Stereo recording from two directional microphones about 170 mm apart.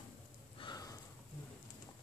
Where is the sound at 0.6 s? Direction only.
25° left (ahead or behind).